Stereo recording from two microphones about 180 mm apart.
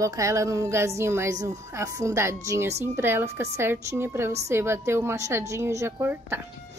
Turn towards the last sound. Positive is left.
turn(degrees=-10)  # may be behind; listen again after turning